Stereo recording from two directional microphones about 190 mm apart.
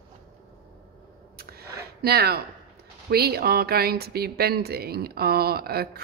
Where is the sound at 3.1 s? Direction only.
55° right (ahead or behind).